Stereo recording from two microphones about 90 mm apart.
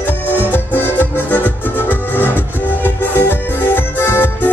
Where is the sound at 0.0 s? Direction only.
20° left (ahead or behind).